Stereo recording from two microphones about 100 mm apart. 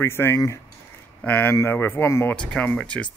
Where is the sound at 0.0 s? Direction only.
25° left (ahead or behind).